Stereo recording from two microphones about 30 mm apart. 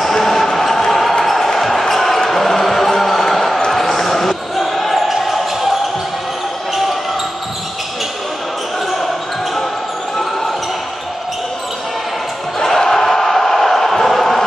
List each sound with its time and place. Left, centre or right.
0.1 s basketball bounce: centre
0.5 s a sound: centre
1.2 s basketball bounce: centre
12.5 s crowd: centre